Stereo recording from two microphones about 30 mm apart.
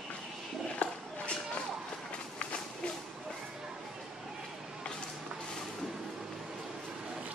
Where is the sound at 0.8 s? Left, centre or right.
Left.